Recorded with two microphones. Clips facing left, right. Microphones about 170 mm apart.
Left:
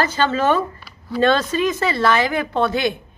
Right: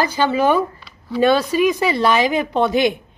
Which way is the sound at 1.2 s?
10° right (ahead or behind).